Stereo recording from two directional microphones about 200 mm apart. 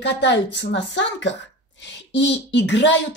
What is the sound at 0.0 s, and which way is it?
Speech, 60° left (ahead or behind).